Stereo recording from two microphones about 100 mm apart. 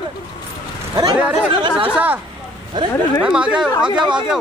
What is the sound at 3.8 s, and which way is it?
Speech, 50° right (ahead or behind).